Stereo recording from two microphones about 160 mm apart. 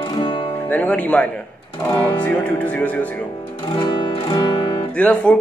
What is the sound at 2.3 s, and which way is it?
Speech, 10° left (ahead or behind).